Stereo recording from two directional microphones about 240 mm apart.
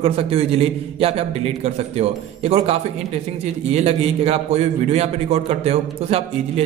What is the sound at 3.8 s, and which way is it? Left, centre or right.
A man's voice, right.